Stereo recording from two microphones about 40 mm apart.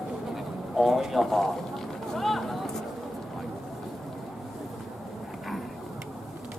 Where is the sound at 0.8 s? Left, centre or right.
Centre.